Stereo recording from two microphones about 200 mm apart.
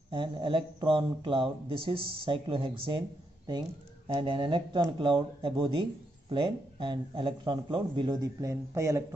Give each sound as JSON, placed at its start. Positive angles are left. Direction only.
{"t": 0.1, "sound": "speech", "side_deg": -25}
{"t": 4.1, "sound": "speech", "side_deg": -25}